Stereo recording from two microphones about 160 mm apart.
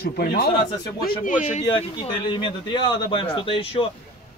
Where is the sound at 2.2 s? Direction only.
30° left (ahead or behind).